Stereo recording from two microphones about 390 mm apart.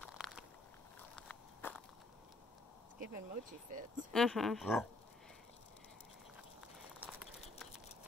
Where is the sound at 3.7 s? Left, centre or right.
Centre.